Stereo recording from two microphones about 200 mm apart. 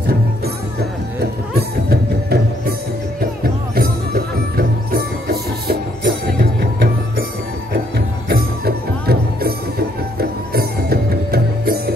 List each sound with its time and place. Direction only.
1.5 s music: 50° right (ahead or behind)
8.3 s music: 50° right (ahead or behind)